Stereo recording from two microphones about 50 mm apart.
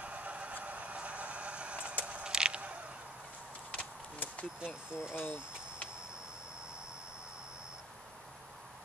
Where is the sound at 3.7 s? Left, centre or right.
Left.